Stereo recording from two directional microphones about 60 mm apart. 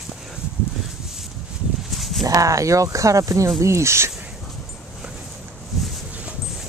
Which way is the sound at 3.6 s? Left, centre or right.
Right.